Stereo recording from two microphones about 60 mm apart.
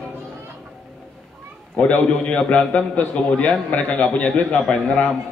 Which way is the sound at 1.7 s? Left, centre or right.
Left.